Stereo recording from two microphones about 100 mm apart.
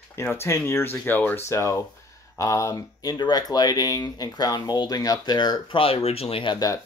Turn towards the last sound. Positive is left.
turn(degrees=60)  # may be behind; listen again after turning